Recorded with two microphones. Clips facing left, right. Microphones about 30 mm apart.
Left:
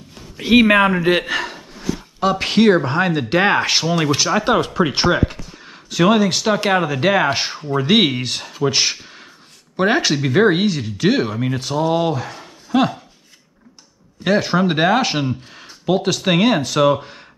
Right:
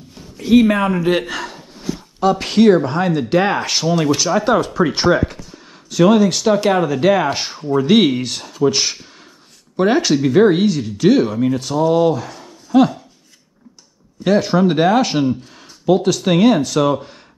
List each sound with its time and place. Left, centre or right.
0.4 s speech: left
0.9 s speech: left
14.2 s speech: centre